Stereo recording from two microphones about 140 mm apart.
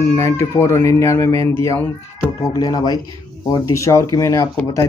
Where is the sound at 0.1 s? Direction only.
20° left (ahead or behind).